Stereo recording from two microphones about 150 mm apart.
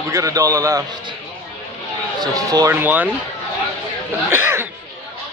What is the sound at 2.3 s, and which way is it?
Speech, 25° right (ahead or behind).